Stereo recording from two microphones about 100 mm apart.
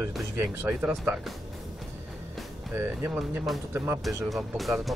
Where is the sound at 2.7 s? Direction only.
25° right (ahead or behind).